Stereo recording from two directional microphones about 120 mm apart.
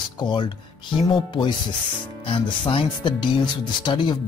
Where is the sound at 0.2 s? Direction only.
40° left (ahead or behind).